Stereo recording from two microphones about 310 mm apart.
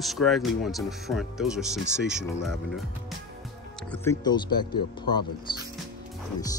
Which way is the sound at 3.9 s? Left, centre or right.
Centre.